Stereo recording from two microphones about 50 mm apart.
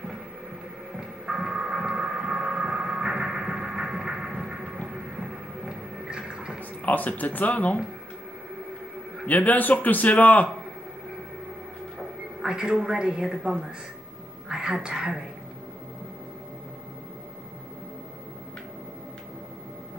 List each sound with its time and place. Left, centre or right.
0.9 s music: centre
4.8 s a sound: centre
6.8 s a man's voice: left
9.2 s a man's voice: left
12.0 s a woman's voice: centre